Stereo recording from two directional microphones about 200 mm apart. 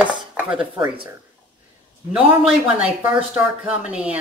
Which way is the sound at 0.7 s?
20° right (ahead or behind).